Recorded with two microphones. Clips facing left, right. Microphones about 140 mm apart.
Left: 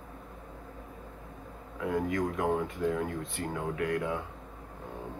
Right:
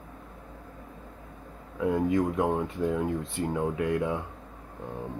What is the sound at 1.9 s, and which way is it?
Speech, 25° right (ahead or behind).